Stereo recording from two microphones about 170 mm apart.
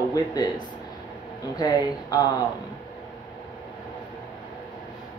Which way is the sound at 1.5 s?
20° left (ahead or behind).